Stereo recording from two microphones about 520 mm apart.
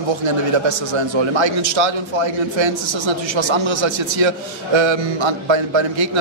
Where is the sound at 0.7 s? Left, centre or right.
Right.